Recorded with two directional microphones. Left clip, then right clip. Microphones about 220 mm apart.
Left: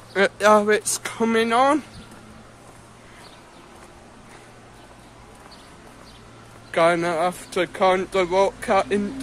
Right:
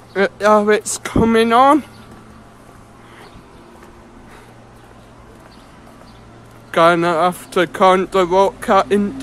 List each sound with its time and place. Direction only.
0.1 s speech: centre (ahead or behind); by 1.9 s 20° right (ahead or behind)
6.7 s speech: 15° right (ahead or behind)